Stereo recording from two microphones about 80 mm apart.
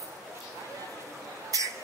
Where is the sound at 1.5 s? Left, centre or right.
Right.